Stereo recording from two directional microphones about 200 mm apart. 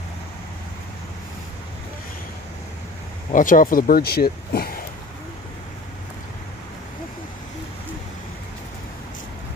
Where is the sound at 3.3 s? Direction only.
40° left (ahead or behind).